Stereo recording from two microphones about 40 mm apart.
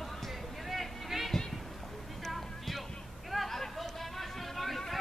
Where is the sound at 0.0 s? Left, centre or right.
Centre.